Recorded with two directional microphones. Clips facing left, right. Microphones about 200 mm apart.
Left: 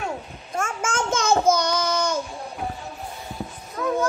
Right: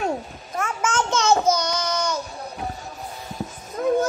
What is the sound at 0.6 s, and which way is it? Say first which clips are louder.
Babbling: right 1 dB; 50° left (ahead or behind).